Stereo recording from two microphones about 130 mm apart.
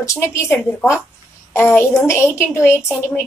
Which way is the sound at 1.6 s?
15° left (ahead or behind).